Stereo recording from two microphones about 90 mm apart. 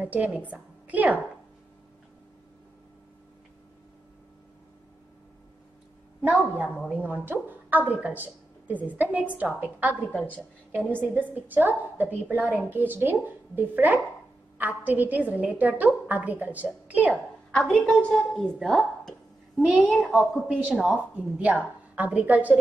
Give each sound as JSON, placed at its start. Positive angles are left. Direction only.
{"t": 0.0, "sound": "a woman's voice", "side_deg": -20}
{"t": 6.9, "sound": "a woman's voice", "side_deg": -20}
{"t": 17.1, "sound": "a woman's voice", "side_deg": 10}